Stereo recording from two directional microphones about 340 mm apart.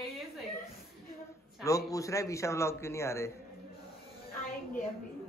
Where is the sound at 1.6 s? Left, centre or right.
Centre.